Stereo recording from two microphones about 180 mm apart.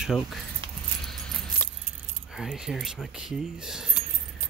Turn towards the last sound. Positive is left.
turn(degrees=0)  # may be behind; listen again after turning